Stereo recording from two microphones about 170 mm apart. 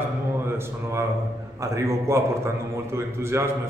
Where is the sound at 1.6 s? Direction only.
15° right (ahead or behind).